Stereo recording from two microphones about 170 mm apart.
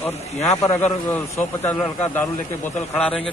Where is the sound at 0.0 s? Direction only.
40° left (ahead or behind).